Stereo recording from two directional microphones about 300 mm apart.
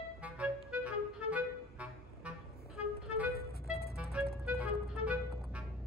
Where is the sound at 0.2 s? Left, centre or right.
Centre.